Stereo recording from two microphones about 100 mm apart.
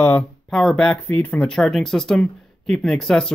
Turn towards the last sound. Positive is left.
turn(degrees=5)  # may be behind; listen again after turning